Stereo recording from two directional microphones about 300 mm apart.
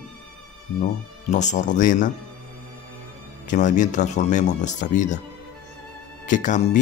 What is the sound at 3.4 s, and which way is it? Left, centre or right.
Speech, left.